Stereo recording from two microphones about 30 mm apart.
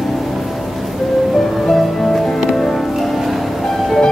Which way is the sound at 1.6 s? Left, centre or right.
Centre.